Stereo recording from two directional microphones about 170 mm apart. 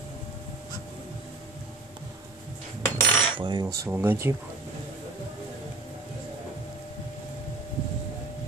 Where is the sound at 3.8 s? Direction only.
15° right (ahead or behind).